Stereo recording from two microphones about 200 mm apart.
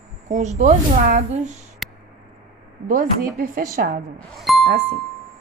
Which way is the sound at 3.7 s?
45° right (ahead or behind).